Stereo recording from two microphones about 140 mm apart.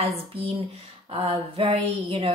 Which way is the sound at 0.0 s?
45° right (ahead or behind).